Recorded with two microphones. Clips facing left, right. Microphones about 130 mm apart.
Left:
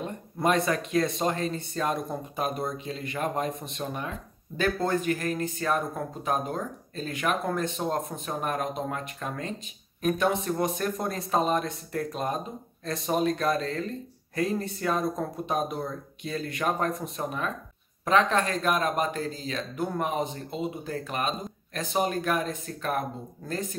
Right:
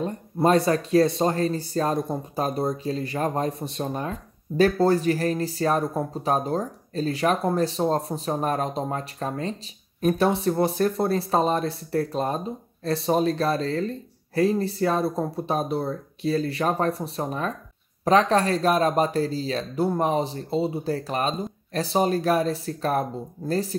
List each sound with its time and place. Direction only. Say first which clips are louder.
0.0 s speech: right 5 dB; 30° right (ahead or behind)